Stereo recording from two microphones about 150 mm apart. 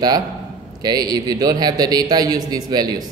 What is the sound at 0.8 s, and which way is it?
A man's voice, 25° right (ahead or behind).